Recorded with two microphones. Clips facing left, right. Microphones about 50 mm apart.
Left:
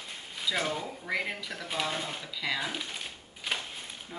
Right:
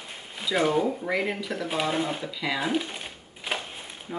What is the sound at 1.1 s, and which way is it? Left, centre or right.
Speech, centre.